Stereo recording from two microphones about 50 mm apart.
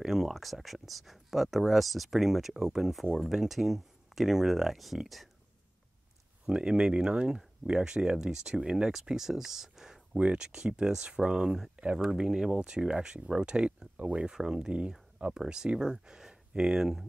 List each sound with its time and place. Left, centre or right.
0.0 s speech: centre
6.4 s speech: centre
10.1 s speech: centre
11.7 s speech: right
12.0 s speech: centre
14.3 s speech: centre